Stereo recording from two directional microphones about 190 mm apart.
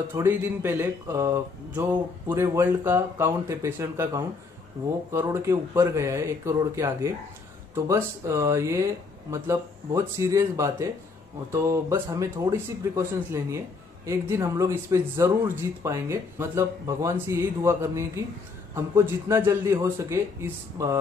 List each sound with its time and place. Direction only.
0.1 s speech: 10° right (ahead or behind)